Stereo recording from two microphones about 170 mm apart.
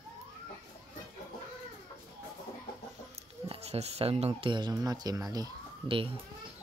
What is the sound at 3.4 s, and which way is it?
Speech, 35° right (ahead or behind).